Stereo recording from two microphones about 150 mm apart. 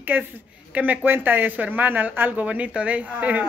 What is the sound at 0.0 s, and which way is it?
A woman's voice, 10° right (ahead or behind).